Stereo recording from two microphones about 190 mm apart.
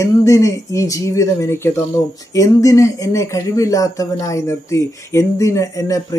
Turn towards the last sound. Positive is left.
turn(degrees=15)  # may be behind; listen again after turning